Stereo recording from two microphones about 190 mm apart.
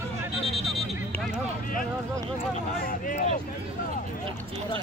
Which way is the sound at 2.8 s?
45° left (ahead or behind).